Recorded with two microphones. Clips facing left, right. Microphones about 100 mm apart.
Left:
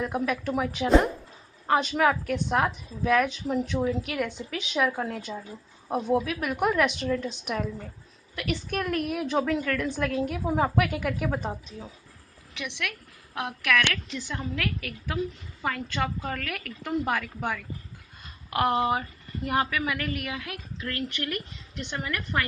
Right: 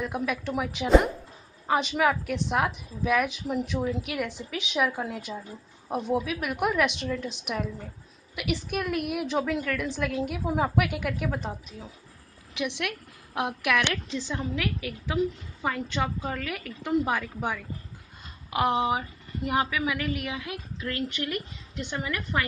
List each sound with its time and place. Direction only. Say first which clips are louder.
0.0 s a woman's voice: left 2 dB; centre (ahead or behind)
12.5 s a woman's voice: right 4 dB; 10° right (ahead or behind)
14.0 s a woman's voice: right 3 dB; 25° right (ahead or behind)
14.3 s a woman's voice: even; 15° right (ahead or behind)